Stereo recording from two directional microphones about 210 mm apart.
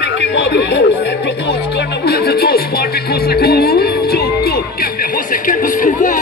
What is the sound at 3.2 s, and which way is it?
Music, 45° left (ahead or behind).